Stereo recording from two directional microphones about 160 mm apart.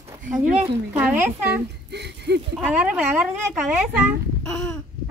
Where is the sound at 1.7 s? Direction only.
90° right.